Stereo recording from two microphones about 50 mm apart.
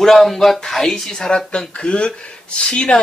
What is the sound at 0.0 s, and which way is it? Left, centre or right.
Speech, centre.